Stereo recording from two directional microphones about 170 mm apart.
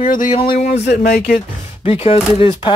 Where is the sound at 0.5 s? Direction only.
40° left (ahead or behind).